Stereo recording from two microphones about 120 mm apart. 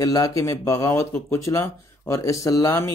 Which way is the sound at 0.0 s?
30° left (ahead or behind).